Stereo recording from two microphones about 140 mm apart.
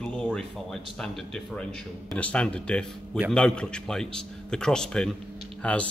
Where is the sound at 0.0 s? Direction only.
5° left (ahead or behind).